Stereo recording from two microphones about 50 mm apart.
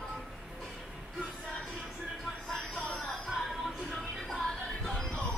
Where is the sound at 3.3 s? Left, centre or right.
Centre.